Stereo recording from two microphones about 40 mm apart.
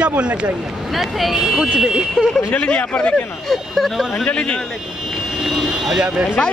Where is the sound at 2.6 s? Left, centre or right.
Left.